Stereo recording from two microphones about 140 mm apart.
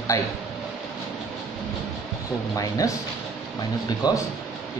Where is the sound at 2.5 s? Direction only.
25° left (ahead or behind).